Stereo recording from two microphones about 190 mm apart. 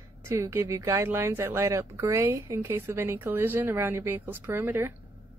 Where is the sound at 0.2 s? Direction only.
15° right (ahead or behind).